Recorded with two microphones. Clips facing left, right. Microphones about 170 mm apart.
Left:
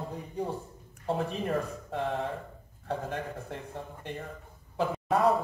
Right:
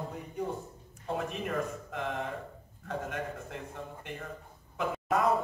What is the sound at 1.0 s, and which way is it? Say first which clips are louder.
A man's voice: left 4 dB; 30° left (ahead or behind).